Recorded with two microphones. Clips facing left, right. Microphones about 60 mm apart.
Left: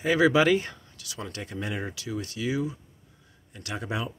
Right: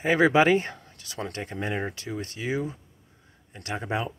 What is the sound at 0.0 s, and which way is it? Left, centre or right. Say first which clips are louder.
A man's voice: right 1 dB; right.